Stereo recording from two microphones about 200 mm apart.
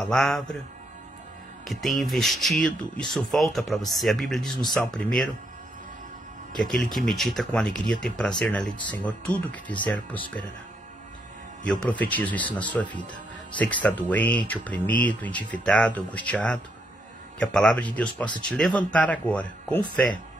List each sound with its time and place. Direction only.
0.0 s speech: centre (ahead or behind)
1.7 s speech: centre (ahead or behind)
6.7 s speech: centre (ahead or behind)
11.6 s speech: 5° left (ahead or behind)